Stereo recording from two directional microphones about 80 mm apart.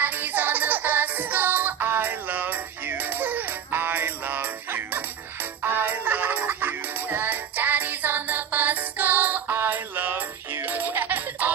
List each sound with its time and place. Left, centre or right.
0.0 s music: right